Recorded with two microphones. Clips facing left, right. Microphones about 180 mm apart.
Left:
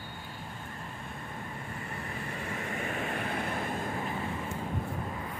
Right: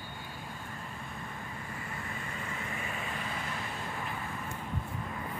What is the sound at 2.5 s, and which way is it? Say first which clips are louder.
Vehicle: left 6 dB; 50° left (ahead or behind).